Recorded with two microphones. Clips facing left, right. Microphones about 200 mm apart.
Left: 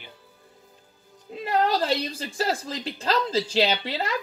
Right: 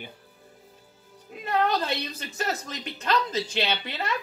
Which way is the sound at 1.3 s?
30° left (ahead or behind).